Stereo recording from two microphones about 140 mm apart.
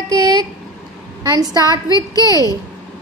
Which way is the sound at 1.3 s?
30° right (ahead or behind).